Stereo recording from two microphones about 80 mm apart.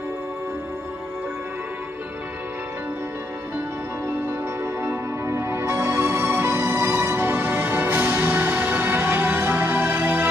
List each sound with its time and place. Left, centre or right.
4.8 s music: right